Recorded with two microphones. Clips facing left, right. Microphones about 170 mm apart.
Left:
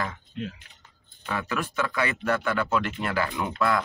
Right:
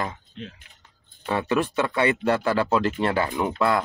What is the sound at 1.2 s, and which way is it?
Speech, 30° right (ahead or behind).